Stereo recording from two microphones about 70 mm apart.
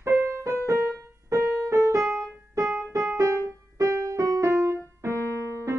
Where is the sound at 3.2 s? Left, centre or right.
Right.